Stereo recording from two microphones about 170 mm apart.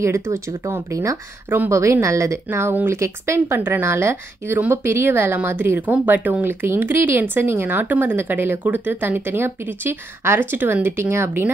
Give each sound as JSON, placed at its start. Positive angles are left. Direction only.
{"t": 0.0, "sound": "speech", "side_deg": -15}